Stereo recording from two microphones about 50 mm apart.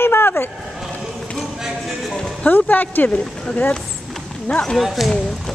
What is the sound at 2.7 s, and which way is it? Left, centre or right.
Speech, left.